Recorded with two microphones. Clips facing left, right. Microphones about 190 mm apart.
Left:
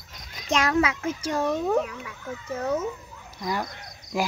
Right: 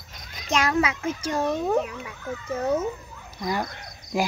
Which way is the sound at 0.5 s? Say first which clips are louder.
Even; 10° right (ahead or behind).